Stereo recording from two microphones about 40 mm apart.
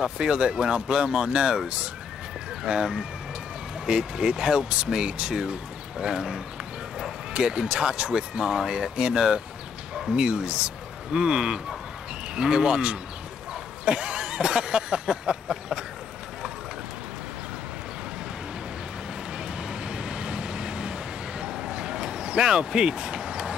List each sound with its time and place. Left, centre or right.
0.0 s speech: centre
2.6 s speech: centre
13.8 s a sound: centre
19.3 s vehicle: centre